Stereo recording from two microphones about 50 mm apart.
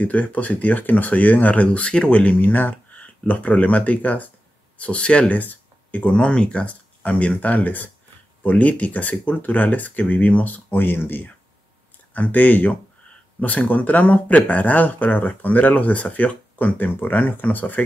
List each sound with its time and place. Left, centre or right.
0.0 s speech: left
5.3 s a sound: left
6.1 s speech: centre; by 11.2 s left
12.1 s speech: left